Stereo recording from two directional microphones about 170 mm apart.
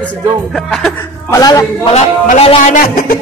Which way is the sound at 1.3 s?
20° left (ahead or behind).